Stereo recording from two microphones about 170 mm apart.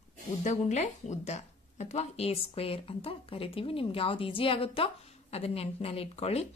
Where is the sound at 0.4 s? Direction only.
45° left (ahead or behind).